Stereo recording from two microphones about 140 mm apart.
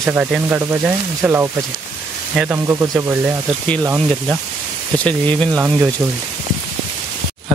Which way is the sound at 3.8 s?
25° right (ahead or behind).